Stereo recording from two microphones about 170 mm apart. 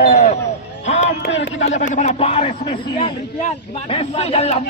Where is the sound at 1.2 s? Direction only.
90° left.